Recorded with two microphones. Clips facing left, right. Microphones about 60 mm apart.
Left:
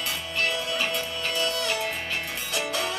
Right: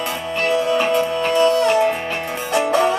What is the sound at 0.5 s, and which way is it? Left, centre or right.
Music, right.